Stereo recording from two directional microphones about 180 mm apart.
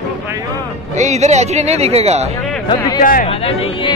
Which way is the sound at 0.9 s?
40° right (ahead or behind).